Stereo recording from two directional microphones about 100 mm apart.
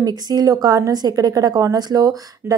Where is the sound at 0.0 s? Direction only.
40° right (ahead or behind).